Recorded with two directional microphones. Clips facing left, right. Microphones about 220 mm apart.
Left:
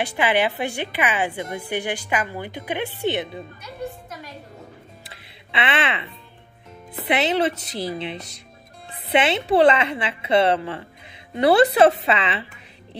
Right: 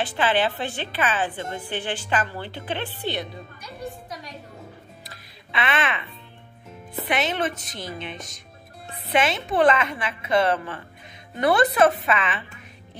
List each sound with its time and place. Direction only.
0.1 s a woman's voice: 15° left (ahead or behind)
5.5 s a woman's voice: 25° left (ahead or behind)